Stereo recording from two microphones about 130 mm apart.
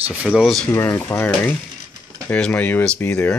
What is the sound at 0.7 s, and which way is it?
Speech, 20° left (ahead or behind).